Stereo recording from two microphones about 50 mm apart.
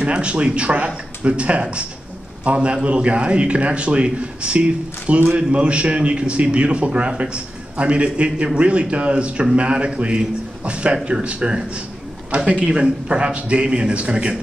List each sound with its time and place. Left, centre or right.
0.0 s a man's voice: right